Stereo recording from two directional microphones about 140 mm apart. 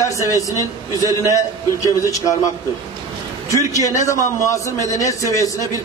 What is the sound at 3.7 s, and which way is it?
A man's voice, 25° left (ahead or behind).